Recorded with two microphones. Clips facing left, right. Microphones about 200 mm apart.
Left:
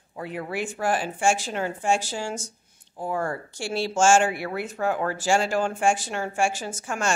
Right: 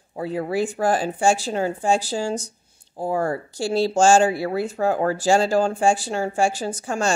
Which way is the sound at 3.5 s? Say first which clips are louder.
Right 6 dB; 35° right (ahead or behind).